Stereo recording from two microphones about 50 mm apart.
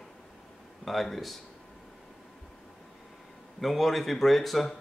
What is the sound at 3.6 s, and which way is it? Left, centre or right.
Speech, centre.